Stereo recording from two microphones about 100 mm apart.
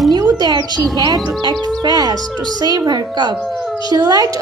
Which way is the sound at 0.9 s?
35° right (ahead or behind).